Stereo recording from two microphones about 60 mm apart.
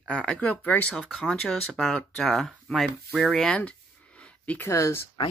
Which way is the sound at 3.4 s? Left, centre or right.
Left.